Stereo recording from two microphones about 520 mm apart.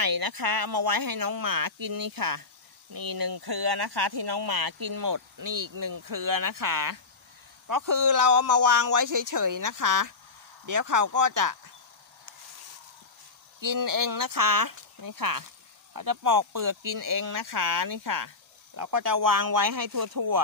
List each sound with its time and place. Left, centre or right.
0.0 s speech: right
13.6 s speech: right